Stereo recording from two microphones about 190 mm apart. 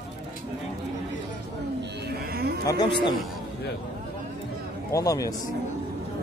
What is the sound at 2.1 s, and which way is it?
Music, 55° right (ahead or behind).